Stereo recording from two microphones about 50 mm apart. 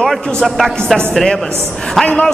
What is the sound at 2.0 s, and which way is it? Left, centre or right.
Speech, left.